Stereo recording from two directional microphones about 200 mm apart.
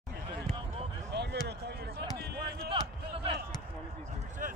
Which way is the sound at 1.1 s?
55° right (ahead or behind).